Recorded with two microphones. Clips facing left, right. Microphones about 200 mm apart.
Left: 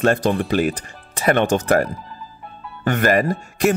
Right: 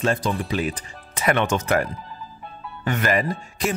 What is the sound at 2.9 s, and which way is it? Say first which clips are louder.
Speech: left 5 dB; 50° left (ahead or behind).